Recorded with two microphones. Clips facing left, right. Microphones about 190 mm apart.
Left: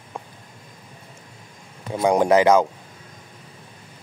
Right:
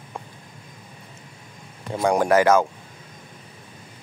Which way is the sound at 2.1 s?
20° left (ahead or behind).